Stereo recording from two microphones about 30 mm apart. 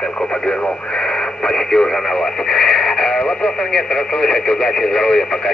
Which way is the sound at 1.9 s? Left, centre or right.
Centre.